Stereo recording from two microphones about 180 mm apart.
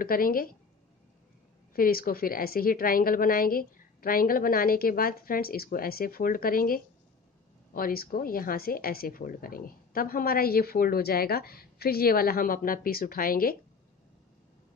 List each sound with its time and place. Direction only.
0.0 s a woman's voice: 55° left (ahead or behind)
1.7 s a woman's voice: 55° left (ahead or behind)